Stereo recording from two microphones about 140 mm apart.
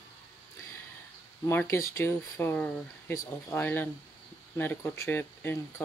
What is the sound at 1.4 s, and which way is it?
Speech, 15° left (ahead or behind).